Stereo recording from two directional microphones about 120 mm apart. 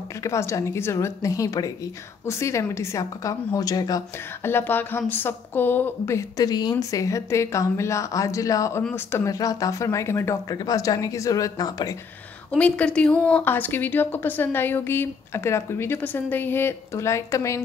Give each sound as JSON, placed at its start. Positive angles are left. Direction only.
{"t": 0.2, "sound": "a woman's voice", "side_deg": 25}
{"t": 4.4, "sound": "a woman's voice", "side_deg": 20}
{"t": 12.4, "sound": "speech", "side_deg": 10}